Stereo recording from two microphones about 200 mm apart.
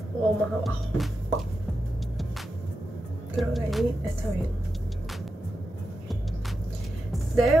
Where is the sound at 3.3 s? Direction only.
Centre (ahead or behind).